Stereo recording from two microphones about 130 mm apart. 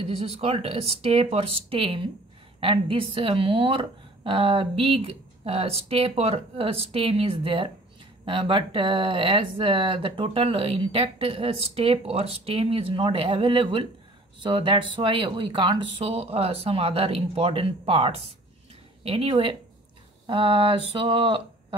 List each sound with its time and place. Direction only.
0.0 s speech: 50° right (ahead or behind)